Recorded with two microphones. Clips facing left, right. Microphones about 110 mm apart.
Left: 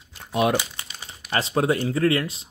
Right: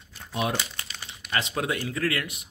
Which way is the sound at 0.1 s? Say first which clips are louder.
Left 7 dB; 75° left (ahead or behind).